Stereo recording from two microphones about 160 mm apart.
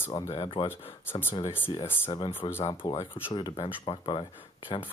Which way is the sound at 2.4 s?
35° left (ahead or behind).